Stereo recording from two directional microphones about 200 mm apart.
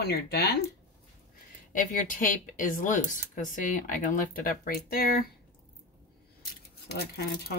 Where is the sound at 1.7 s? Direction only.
40° left (ahead or behind).